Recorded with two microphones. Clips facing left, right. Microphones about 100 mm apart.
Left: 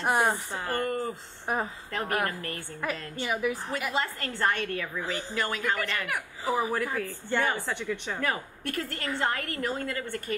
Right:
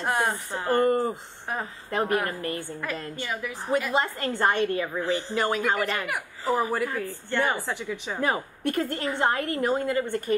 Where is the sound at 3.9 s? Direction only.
20° right (ahead or behind).